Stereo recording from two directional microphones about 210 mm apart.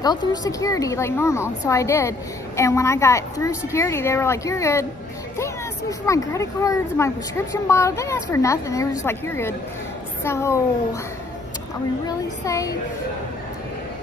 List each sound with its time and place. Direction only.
0.0 s a woman's voice: 20° left (ahead or behind)
12.1 s a woman's voice: 15° left (ahead or behind)